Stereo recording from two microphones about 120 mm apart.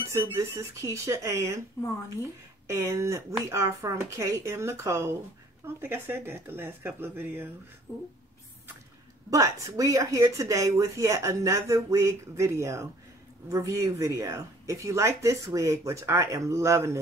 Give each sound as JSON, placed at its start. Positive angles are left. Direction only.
{"t": 0.1, "sound": "speech", "side_deg": -25}
{"t": 2.7, "sound": "speech", "side_deg": -25}
{"t": 7.9, "sound": "speech", "side_deg": 20}
{"t": 9.3, "sound": "speech", "side_deg": -30}